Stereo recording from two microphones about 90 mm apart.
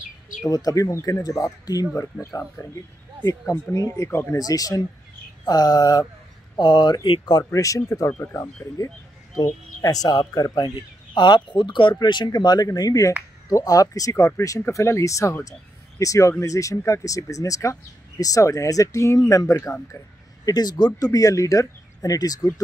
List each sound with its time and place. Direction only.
0.5 s speech: 45° left (ahead or behind)
4.4 s speech: 45° left (ahead or behind)
7.5 s speech: 40° left (ahead or behind)
8.1 s speech: 25° left (ahead or behind)
20.4 s speech: 50° left (ahead or behind)